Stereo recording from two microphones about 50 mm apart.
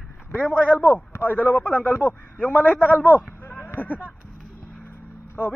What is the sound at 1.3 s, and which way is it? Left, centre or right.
A man's voice, left.